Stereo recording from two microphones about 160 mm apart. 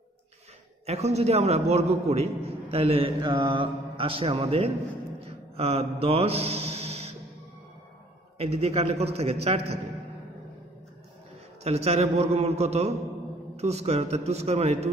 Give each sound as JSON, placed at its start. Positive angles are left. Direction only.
{"t": 0.8, "sound": "a man's voice", "side_deg": -40}
{"t": 5.2, "sound": "mantra", "side_deg": -40}
{"t": 8.4, "sound": "a man's voice", "side_deg": -40}
{"t": 11.6, "sound": "a man's voice", "side_deg": -40}